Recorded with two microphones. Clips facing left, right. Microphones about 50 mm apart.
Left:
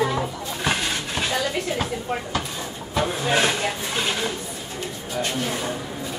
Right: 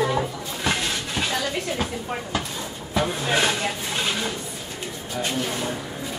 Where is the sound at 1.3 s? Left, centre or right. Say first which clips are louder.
Left 2 dB; centre.